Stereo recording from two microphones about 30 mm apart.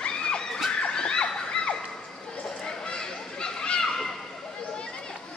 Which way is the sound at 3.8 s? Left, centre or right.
Centre.